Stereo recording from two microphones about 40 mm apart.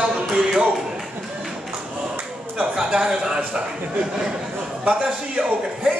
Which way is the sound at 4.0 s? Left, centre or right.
Centre.